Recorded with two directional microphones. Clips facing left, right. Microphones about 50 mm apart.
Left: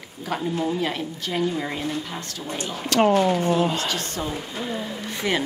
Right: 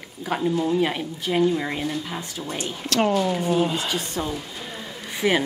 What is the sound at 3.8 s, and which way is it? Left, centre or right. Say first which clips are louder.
Speech: even; centre.